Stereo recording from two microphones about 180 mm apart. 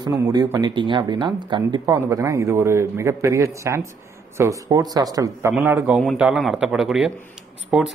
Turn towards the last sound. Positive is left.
turn(degrees=0)  # may be behind; listen again after turning